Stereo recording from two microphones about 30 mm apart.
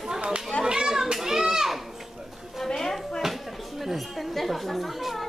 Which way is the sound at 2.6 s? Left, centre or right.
Centre.